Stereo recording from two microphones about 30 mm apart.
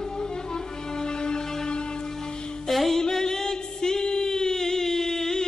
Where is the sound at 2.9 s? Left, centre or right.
Centre.